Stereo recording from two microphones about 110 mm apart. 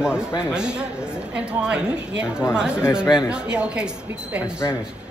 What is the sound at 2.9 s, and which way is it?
Speech, 5° right (ahead or behind).